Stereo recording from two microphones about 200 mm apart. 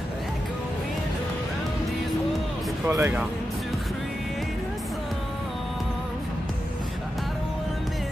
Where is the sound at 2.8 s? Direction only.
10° right (ahead or behind).